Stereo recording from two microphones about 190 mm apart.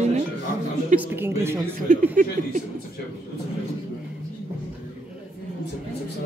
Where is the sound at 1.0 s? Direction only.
10° right (ahead or behind).